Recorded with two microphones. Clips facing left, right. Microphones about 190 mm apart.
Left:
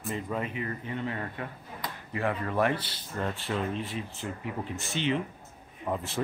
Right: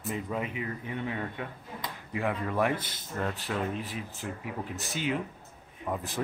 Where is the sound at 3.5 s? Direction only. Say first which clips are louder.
Left 1 dB; centre (ahead or behind).